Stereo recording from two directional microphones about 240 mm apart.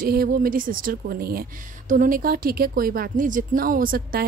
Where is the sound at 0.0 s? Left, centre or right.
Right.